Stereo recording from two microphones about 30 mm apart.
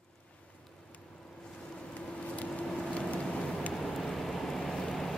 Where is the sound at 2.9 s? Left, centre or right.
Left.